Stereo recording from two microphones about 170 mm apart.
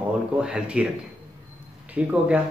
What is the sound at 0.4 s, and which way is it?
Speech, 5° right (ahead or behind).